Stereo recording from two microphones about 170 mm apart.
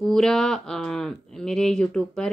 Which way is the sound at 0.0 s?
Centre (ahead or behind).